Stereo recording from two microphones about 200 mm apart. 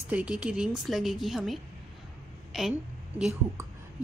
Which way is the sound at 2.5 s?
Centre (ahead or behind).